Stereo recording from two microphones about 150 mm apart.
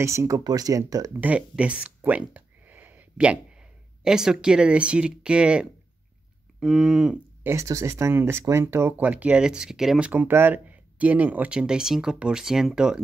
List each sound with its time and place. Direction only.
0.0 s speech: 20° right (ahead or behind)
1.2 s speech: 10° right (ahead or behind)
6.6 s a sound: centre (ahead or behind)
7.4 s speech: 20° right (ahead or behind)